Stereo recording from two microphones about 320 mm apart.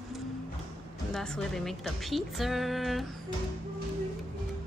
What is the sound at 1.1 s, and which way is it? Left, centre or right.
A woman's voice, centre.